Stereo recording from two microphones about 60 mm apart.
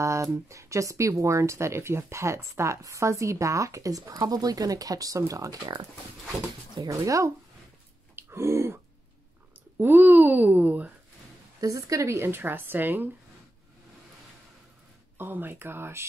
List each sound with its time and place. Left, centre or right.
0.0 s speech: right
6.9 s speech: right
8.2 s a sound: right
9.8 s a child's voice: right
11.6 s speech: right
12.2 s a child's voice: right
15.1 s a child's voice: right